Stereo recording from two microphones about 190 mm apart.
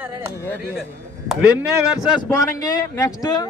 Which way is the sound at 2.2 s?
20° left (ahead or behind).